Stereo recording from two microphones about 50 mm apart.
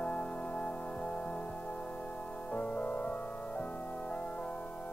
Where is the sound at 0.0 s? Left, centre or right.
Left.